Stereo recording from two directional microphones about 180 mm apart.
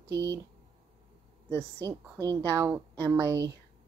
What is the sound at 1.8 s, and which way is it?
A woman's voice, 20° right (ahead or behind).